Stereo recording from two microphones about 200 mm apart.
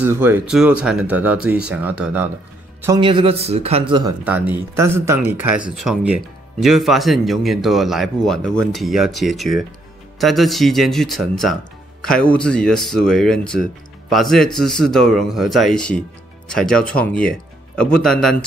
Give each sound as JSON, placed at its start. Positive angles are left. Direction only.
{"t": 0.0, "sound": "speech", "side_deg": -10}
{"t": 3.0, "sound": "a man's voice", "side_deg": -25}
{"t": 4.2, "sound": "speech", "side_deg": -10}